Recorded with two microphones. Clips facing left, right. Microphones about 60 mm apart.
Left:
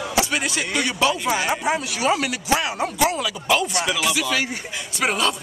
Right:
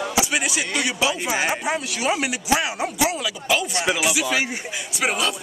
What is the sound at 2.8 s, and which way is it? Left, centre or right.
Speech, centre.